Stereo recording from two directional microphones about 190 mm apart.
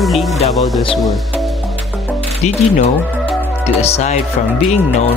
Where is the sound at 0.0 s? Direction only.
Centre (ahead or behind).